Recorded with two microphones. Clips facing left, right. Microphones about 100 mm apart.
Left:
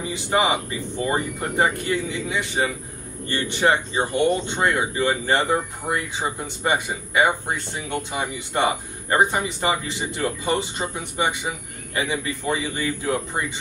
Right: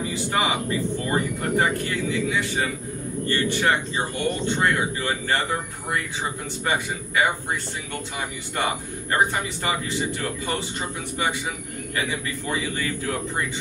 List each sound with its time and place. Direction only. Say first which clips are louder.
0.0 s speech: left 3 dB; 20° left (ahead or behind)